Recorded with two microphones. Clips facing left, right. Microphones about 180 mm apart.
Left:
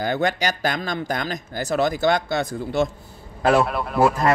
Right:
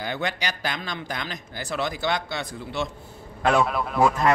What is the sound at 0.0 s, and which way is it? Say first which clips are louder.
Speech: left 7 dB; 45° left (ahead or behind).